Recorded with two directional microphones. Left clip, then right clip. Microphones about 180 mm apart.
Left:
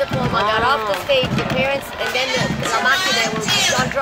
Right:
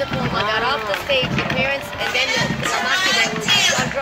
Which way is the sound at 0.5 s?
30° left (ahead or behind).